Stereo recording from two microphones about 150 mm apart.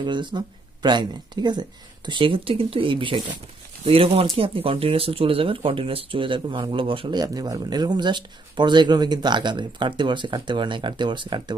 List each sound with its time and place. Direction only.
0.0 s speech: 30° right (ahead or behind)